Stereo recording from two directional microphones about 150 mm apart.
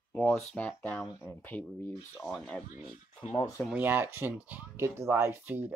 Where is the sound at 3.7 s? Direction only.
10° right (ahead or behind).